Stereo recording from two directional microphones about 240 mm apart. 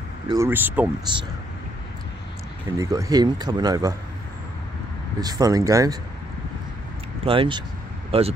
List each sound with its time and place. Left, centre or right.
0.3 s speech: centre
1.1 s speech: centre
2.8 s speech: centre
5.2 s speech: centre
7.2 s speech: right